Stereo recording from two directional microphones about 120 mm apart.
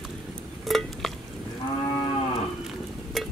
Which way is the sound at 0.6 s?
Centre (ahead or behind).